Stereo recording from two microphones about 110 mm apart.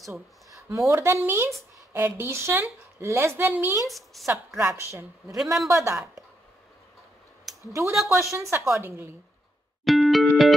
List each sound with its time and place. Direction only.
0.1 s a woman's voice: 30° right (ahead or behind)
4.1 s music: centre (ahead or behind)
4.6 s a woman's voice: 25° right (ahead or behind)
5.4 s music: 5° right (ahead or behind)
5.7 s a woman's voice: 25° right (ahead or behind)
7.8 s music: 5° right (ahead or behind)
8.2 s a woman's voice: 25° right (ahead or behind)
9.8 s music: centre (ahead or behind)